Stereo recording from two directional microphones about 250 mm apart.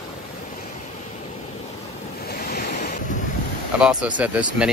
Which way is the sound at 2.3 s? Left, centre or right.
Left.